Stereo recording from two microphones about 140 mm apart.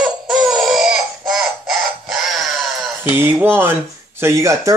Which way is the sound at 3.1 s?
15° right (ahead or behind).